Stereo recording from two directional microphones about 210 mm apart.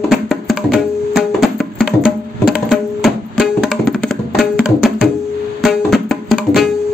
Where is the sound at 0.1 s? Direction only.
Centre (ahead or behind).